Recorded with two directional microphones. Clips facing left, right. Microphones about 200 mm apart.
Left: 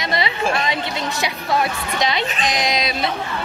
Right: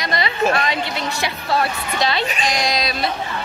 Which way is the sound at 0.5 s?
20° left (ahead or behind).